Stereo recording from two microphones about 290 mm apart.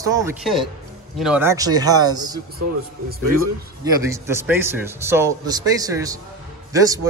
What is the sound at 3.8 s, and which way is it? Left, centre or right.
Speech, centre.